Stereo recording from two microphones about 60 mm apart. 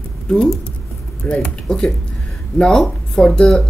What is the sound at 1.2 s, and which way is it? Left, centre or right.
Speech, left.